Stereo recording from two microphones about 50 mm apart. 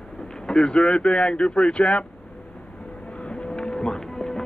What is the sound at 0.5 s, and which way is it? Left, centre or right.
Speech, centre.